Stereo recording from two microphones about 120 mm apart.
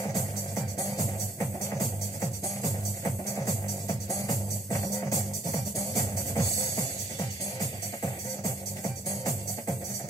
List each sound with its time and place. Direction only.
4.7 s music: 30° left (ahead or behind)
8.8 s music: 25° left (ahead or behind)